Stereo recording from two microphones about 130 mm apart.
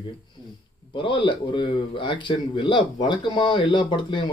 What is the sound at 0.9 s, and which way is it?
Speech, 40° left (ahead or behind).